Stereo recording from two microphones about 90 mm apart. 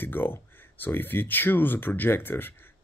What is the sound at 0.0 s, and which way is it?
Speech, 25° left (ahead or behind).